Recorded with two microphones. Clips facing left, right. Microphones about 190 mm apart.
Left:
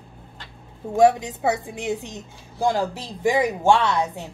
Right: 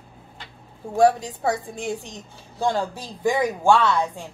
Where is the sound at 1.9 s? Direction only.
20° left (ahead or behind).